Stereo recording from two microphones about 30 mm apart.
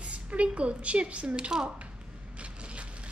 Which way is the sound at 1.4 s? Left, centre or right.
Right.